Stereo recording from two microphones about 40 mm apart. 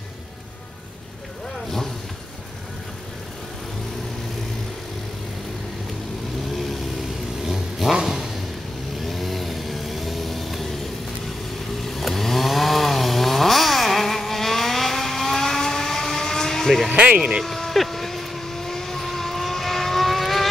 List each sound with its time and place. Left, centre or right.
6.5 s vehicle: centre
7.4 s vehicle: centre
8.9 s vehicle: centre
11.8 s chainsaw: centre
17.2 s a sound: centre
17.5 s vehicle: centre